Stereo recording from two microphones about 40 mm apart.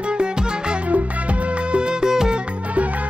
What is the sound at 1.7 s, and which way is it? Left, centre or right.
Music, centre.